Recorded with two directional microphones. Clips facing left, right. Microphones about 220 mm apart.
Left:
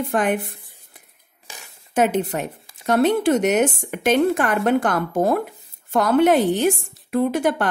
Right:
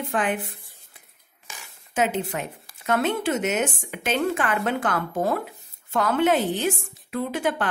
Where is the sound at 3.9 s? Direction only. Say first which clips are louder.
Left 7 dB; 45° left (ahead or behind).